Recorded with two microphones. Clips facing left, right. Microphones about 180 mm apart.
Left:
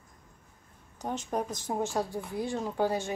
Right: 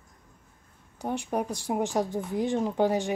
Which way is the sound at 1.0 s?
15° right (ahead or behind).